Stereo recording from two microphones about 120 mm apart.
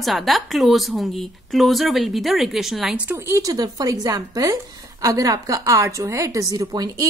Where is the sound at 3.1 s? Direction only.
25° right (ahead or behind).